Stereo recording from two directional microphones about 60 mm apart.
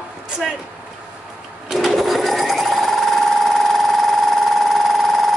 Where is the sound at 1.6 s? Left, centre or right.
Centre.